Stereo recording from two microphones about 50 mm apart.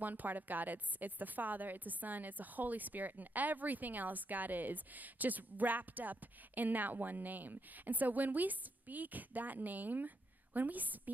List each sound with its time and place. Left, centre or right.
0.0 s a woman's voice: right